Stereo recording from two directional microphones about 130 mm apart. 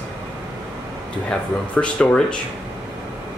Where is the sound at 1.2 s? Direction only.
10° left (ahead or behind).